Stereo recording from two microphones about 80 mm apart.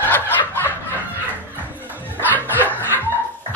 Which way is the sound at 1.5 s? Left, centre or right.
Right.